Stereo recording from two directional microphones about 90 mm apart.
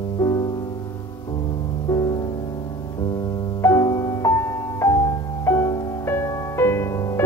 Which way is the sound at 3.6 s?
35° left (ahead or behind).